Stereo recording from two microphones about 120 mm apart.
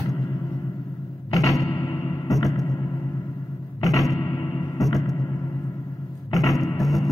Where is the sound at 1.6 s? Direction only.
35° left (ahead or behind).